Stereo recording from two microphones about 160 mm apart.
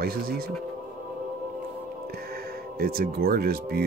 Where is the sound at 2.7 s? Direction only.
70° right (ahead or behind).